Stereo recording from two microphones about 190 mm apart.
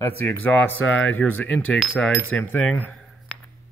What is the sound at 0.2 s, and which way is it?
Speech, 10° left (ahead or behind).